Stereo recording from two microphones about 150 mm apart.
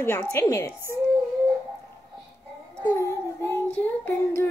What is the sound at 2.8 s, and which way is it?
Child singing, 20° left (ahead or behind).